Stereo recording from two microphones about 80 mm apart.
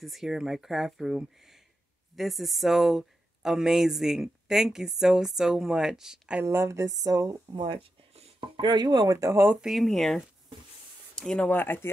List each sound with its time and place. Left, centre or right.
0.0 s speech: centre
6.4 s speech: right
7.5 s speech: right
9.6 s speech: centre
11.5 s speech: left